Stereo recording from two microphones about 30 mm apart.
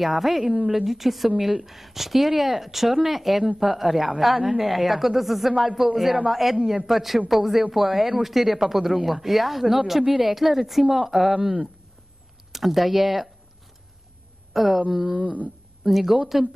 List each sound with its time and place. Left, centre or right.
0.2 s speech: centre
12.5 s speech: centre
14.5 s speech: centre
15.1 s speech: right
15.8 s a woman's voice: centre